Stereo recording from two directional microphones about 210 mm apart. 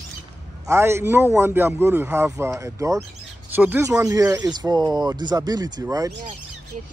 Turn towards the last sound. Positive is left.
turn(degrees=-15)  # may be behind; listen again after turning